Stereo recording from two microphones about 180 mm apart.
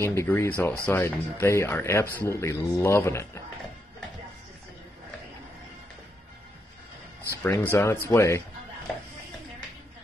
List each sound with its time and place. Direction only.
0.0 s speech: 15° left (ahead or behind)
7.4 s speech: 15° left (ahead or behind)